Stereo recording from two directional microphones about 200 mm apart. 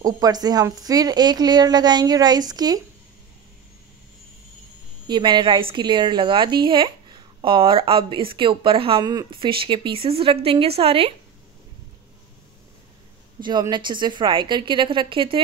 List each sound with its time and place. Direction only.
0.0 s a woman's voice: 20° right (ahead or behind)
5.0 s a woman's voice: 20° right (ahead or behind)
13.4 s a woman's voice: 20° right (ahead or behind)